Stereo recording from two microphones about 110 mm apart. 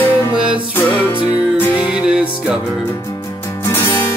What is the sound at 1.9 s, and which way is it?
Music, 10° right (ahead or behind).